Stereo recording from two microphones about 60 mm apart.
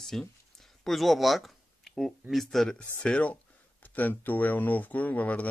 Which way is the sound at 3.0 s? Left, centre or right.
Left.